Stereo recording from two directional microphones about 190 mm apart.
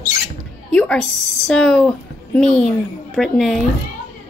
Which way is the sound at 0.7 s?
5° left (ahead or behind).